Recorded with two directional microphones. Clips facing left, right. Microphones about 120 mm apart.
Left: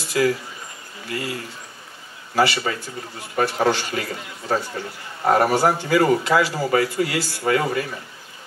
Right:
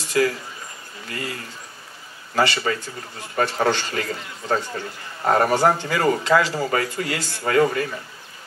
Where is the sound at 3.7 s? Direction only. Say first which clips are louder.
Left 1 dB; 15° left (ahead or behind).